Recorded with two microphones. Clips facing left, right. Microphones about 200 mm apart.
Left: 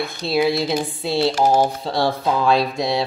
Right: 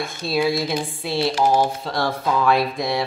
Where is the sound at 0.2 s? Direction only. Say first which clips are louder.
Left 2 dB; 20° left (ahead or behind).